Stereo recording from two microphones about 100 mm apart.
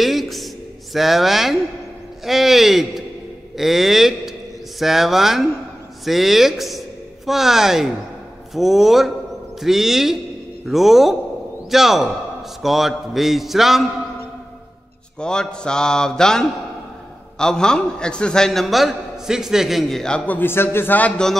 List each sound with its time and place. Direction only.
0.0 s a sound: centre (ahead or behind)
0.9 s a man's voice: centre (ahead or behind)
15.1 s mantra: 10° left (ahead or behind)
17.4 s a man's voice: 5° left (ahead or behind)
20.2 s a man's voice: 20° left (ahead or behind)